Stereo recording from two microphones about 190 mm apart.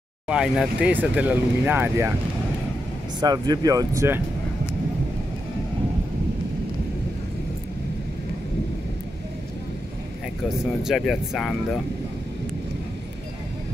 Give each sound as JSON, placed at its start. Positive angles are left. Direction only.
{"t": 0.3, "sound": "speech", "side_deg": -5}
{"t": 3.2, "sound": "speech", "side_deg": -20}
{"t": 10.8, "sound": "speech", "side_deg": 0}